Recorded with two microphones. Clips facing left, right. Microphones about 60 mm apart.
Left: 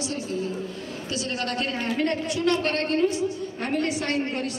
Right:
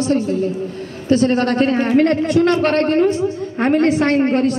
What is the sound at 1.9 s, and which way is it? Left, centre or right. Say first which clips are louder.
A woman's voice: right 13 dB; right.